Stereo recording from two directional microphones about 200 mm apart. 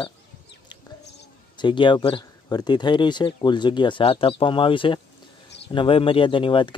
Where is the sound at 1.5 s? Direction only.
25° left (ahead or behind).